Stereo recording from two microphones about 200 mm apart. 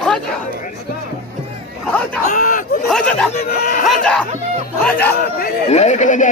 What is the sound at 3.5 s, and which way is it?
Speech, 50° left (ahead or behind).